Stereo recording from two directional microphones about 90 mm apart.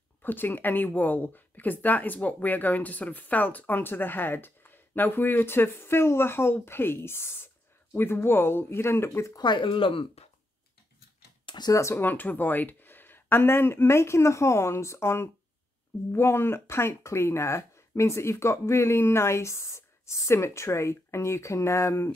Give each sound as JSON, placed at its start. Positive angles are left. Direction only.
{"t": 0.2, "sound": "speech", "side_deg": 20}
{"t": 9.4, "sound": "speech", "side_deg": 60}
{"t": 11.4, "sound": "a sound", "side_deg": 50}
{"t": 11.7, "sound": "speech", "side_deg": 30}